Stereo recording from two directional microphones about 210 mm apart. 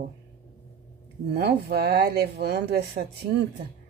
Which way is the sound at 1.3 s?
50° right (ahead or behind).